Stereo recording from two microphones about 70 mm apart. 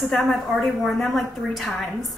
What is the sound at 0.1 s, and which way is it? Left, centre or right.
A woman's voice, centre.